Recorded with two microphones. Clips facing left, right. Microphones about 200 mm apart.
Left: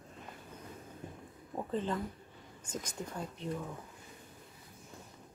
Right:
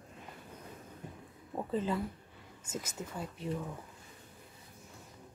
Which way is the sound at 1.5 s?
5° right (ahead or behind).